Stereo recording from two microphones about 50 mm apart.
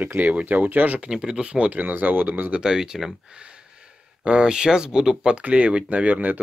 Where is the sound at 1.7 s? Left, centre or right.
Right.